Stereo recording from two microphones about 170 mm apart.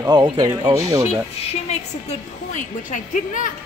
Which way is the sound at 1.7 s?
45° left (ahead or behind).